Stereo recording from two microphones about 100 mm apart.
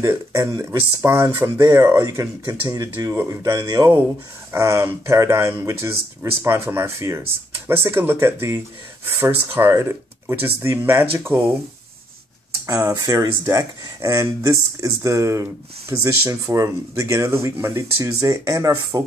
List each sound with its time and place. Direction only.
0.0 s speech: 30° right (ahead or behind)
12.6 s speech: 35° right (ahead or behind)